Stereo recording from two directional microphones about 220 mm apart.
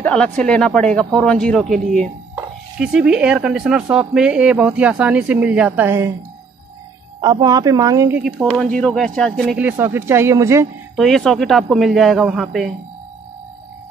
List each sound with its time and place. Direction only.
0.0 s speech: 5° left (ahead or behind)
7.2 s a woman's voice: 20° right (ahead or behind)
8.2 s speech: 5° right (ahead or behind)
11.0 s speech: centre (ahead or behind)